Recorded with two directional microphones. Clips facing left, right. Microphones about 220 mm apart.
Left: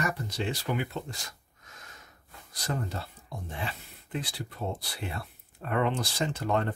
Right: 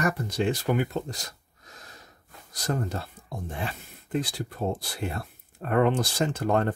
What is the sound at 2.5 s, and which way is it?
Speech, 45° right (ahead or behind).